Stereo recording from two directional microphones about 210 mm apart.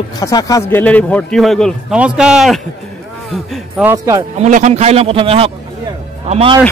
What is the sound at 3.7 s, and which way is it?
Speech, 10° right (ahead or behind).